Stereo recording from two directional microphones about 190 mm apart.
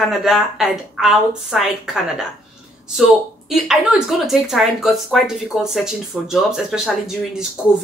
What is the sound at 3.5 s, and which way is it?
Speech, centre (ahead or behind).